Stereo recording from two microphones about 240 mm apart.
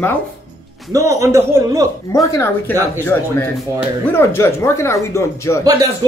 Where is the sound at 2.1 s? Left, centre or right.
Centre.